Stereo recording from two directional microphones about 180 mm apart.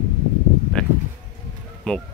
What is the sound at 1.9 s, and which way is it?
Speech, 5° left (ahead or behind).